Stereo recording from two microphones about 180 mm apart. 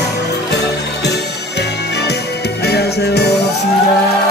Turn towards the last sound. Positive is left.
turn(degrees=65)  # may be behind; listen again after turning